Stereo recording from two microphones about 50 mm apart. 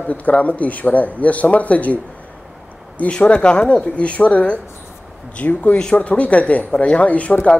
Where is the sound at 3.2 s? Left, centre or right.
Left.